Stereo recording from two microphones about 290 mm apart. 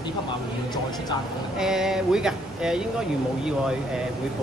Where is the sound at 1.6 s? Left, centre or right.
Centre.